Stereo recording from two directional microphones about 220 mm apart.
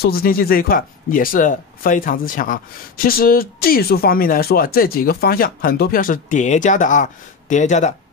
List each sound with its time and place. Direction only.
0.0 s speech: 45° left (ahead or behind)